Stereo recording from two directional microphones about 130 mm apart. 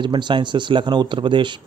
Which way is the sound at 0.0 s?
40° right (ahead or behind).